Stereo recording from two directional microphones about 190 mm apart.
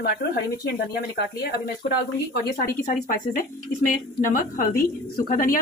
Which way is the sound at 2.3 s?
50° left (ahead or behind).